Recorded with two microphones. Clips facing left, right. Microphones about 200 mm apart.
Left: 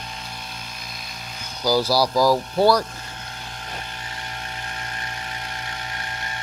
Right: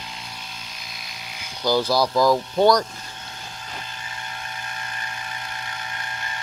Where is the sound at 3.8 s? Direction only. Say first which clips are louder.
Left 1 dB; 60° left (ahead or behind).